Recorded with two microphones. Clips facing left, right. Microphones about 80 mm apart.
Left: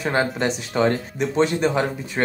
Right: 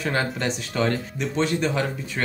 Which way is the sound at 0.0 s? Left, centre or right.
Left.